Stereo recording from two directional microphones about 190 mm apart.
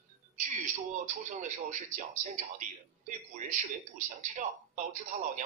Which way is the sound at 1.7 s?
40° right (ahead or behind).